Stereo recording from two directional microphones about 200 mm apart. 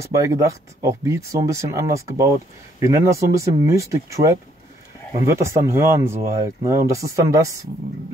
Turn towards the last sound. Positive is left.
turn(degrees=-15)  # may be behind; listen again after turning